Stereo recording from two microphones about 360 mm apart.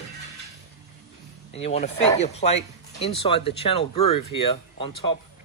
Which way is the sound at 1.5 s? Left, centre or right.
Centre.